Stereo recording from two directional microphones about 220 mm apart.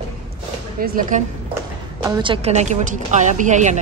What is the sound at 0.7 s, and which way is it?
Speech, 40° right (ahead or behind).